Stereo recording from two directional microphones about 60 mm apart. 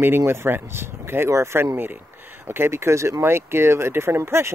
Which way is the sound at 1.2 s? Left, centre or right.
Right.